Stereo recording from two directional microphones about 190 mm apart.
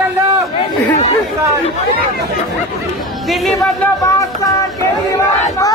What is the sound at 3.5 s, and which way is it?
Music, 15° left (ahead or behind).